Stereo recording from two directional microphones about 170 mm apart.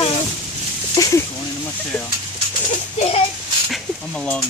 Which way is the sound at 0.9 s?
20° left (ahead or behind).